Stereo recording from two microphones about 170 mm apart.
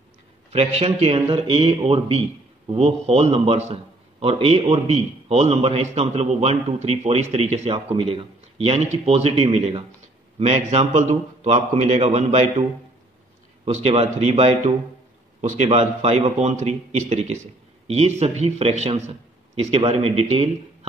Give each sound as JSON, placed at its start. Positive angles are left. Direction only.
{"t": 0.5, "sound": "a man's voice", "side_deg": -35}
{"t": 13.7, "sound": "a man's voice", "side_deg": -40}